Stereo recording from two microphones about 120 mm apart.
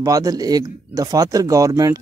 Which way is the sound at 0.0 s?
30° right (ahead or behind).